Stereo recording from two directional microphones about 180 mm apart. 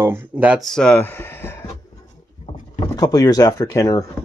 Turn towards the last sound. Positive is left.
turn(degrees=20)  # may be behind; listen again after turning